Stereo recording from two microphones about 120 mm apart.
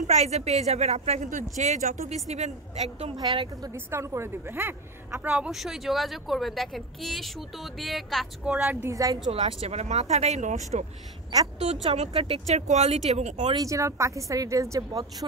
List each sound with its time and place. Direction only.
0.0 s speech: 70° right (ahead or behind)
2.2 s speech: 70° right (ahead or behind)
3.7 s a woman's voice: 20° right (ahead or behind)
8.8 s a woman's voice: 30° right (ahead or behind)
9.3 s speech: 55° right (ahead or behind); by 10.9 s 75° right (ahead or behind)
11.6 s speech: 60° right (ahead or behind)
13.6 s a woman's voice: 25° right (ahead or behind)